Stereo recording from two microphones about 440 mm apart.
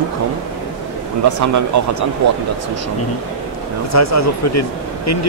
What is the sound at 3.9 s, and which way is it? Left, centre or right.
Speech, left.